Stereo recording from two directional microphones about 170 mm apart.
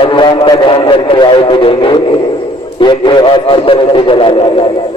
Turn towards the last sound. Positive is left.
turn(degrees=30)  # may be behind; listen again after turning